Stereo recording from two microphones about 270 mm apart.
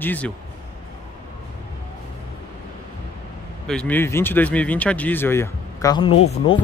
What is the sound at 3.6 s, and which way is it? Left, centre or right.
Speech, centre.